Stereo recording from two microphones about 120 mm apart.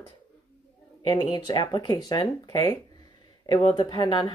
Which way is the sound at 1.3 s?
40° left (ahead or behind).